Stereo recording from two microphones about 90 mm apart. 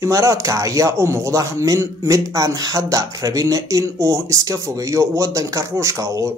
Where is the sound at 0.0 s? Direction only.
35° right (ahead or behind).